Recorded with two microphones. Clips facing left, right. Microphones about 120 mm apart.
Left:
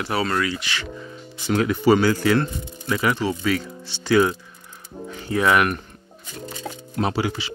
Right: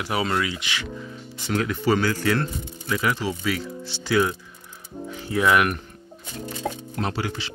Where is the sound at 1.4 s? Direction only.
10° left (ahead or behind).